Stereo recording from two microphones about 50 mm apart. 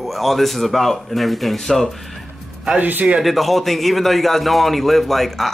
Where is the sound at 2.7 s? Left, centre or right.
Right.